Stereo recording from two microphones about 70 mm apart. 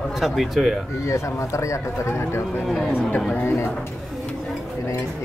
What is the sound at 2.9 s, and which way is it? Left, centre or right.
Speech, left.